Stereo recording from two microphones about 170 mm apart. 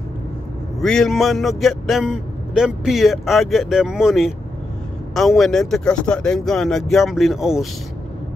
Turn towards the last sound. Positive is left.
turn(degrees=0)  # may be behind; listen again after turning